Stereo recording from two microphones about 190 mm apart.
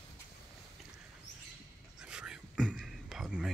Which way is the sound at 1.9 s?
5° right (ahead or behind).